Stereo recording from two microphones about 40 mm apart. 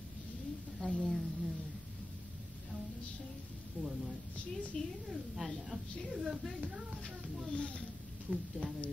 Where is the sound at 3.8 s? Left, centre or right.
Centre.